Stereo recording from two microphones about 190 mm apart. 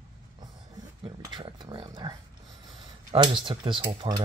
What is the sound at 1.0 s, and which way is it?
Speech, 25° right (ahead or behind).